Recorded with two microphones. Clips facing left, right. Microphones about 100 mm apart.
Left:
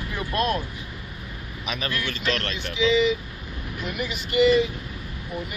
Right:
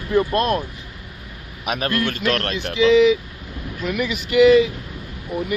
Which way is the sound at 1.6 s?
55° right (ahead or behind).